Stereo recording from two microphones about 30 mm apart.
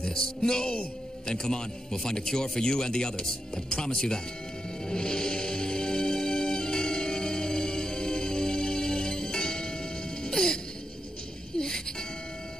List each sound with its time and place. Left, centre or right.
0.0 s a man's voice: left
4.8 s music: left